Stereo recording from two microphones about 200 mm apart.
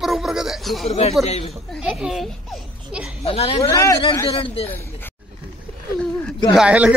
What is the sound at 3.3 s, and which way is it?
Speech, 30° left (ahead or behind).